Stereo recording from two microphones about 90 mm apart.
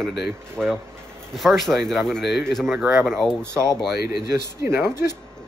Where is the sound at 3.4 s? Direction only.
30° right (ahead or behind).